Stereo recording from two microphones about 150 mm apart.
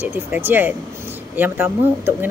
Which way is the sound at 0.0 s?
15° right (ahead or behind).